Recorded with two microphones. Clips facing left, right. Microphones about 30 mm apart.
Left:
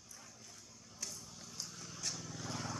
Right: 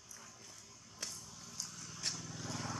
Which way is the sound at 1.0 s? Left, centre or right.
Right.